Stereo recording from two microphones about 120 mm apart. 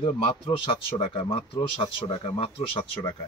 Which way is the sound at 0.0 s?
45° left (ahead or behind).